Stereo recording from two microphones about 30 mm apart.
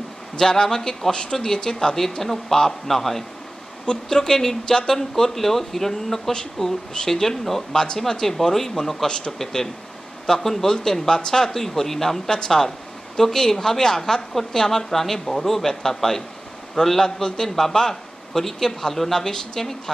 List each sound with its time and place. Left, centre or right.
0.4 s speech: centre
1.1 s speech: left
1.6 s speech: centre
6.6 s speech: left
7.1 s speech: centre
7.7 s speech: left
8.1 s speech: centre
9.0 s speech: left
9.4 s speech: centre
11.5 s speech: centre